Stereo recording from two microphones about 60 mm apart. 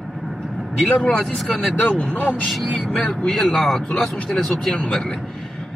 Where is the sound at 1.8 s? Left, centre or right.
Centre.